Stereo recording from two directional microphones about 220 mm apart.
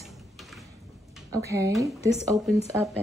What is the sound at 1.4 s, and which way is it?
Child singing, 15° right (ahead or behind).